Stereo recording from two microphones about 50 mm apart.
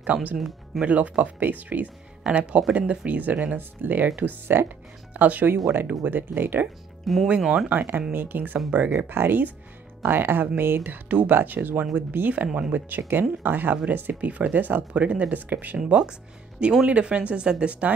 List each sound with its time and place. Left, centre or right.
0.0 s speech: right
2.2 s speech: right
3.5 s speech: right
4.6 s speech: right
5.7 s speech: right
7.1 s speech: centre
7.4 s speech: centre
7.7 s speech: right
8.9 s speech: right
16.0 s speech: centre